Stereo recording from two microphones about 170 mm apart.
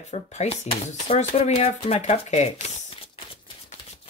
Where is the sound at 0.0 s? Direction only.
40° left (ahead or behind).